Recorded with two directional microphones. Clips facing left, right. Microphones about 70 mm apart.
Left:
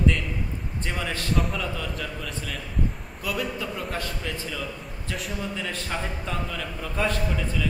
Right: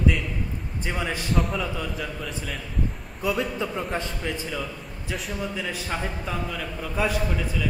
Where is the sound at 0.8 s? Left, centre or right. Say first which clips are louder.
Right 2 dB; centre.